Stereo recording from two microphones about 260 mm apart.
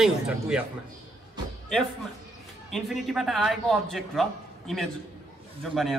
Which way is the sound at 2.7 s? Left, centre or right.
Centre.